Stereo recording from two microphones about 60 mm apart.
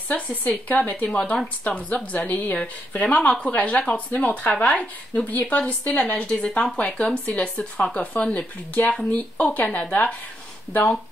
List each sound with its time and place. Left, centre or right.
0.1 s a woman's voice: left
6.9 s a woman's voice: centre